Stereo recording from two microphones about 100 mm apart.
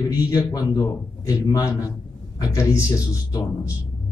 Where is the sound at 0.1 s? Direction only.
40° left (ahead or behind).